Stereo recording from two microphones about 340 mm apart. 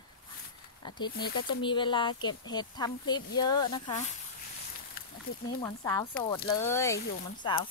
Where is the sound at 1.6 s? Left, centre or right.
Centre.